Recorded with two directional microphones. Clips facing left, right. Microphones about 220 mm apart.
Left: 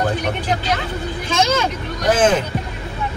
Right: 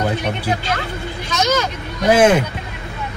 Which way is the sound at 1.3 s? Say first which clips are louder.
Even; 30° left (ahead or behind).